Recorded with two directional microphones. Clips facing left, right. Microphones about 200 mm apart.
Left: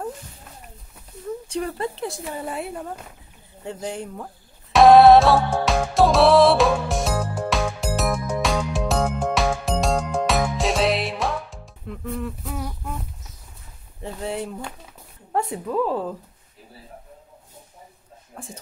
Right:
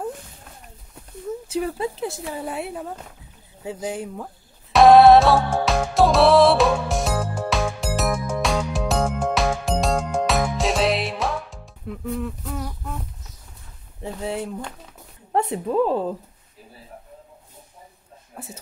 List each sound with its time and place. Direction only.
1.5 s speech: 5° right (ahead or behind)
4.7 s music: centre (ahead or behind)
14.0 s speech: centre (ahead or behind)
15.3 s a woman's voice: 25° right (ahead or behind)
18.3 s a sound: 5° right (ahead or behind)